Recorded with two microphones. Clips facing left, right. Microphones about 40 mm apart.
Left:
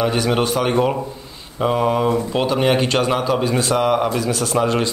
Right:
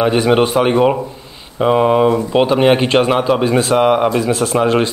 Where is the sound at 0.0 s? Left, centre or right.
Right.